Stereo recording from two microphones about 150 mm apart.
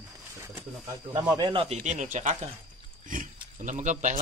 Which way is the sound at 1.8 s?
55° right (ahead or behind).